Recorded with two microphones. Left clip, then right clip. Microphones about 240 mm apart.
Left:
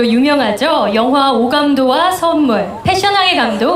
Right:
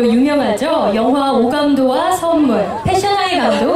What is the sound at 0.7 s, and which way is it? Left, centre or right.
A man's voice, centre.